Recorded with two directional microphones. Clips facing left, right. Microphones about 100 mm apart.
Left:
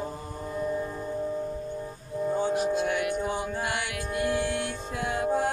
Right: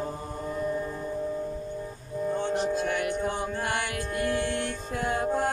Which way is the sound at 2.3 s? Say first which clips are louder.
Left 1 dB; 10° left (ahead or behind).